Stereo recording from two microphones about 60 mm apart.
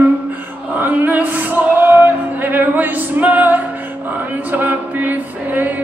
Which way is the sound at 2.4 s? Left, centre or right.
Right.